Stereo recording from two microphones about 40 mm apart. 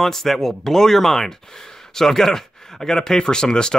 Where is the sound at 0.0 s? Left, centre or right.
Centre.